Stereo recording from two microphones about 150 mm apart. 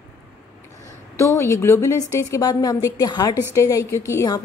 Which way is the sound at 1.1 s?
20° left (ahead or behind).